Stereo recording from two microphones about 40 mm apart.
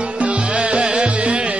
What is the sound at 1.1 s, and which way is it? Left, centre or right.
Carnatic music, right.